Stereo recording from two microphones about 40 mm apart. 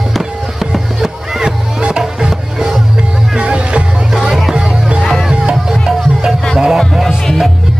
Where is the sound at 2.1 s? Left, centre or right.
Centre.